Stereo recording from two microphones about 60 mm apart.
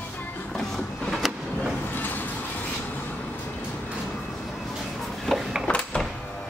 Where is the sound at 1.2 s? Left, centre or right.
Centre.